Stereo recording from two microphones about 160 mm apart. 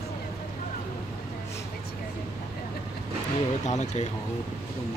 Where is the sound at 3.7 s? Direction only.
45° left (ahead or behind).